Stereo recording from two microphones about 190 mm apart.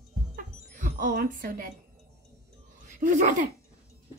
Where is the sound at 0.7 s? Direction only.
40° right (ahead or behind).